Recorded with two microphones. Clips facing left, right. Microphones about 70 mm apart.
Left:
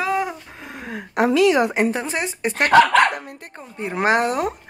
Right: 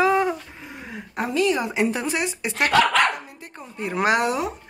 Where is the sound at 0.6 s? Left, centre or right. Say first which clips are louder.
Left 4 dB; left.